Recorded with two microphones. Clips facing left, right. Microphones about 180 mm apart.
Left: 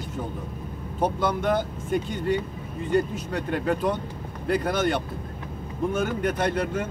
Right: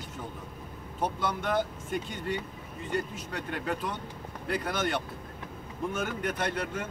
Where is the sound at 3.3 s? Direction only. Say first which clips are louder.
Left 8 dB; 40° left (ahead or behind).